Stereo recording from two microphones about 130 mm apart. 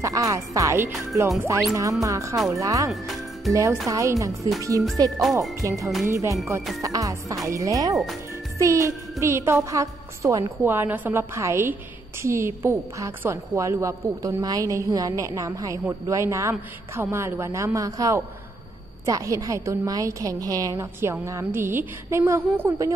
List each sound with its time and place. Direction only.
0.0 s a woman's voice: 25° right (ahead or behind)
2.9 s music: centre (ahead or behind)
3.8 s a woman's voice: 25° right (ahead or behind)